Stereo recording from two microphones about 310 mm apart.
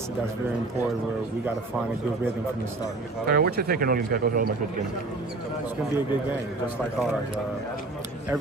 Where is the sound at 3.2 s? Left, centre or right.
Right.